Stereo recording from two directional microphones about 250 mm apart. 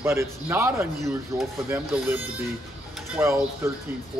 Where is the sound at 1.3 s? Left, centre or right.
Centre.